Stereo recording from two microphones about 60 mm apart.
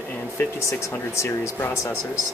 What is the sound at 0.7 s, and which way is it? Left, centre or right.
Speech, left.